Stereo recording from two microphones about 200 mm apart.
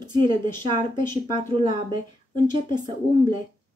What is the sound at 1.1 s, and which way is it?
Speech, 20° right (ahead or behind).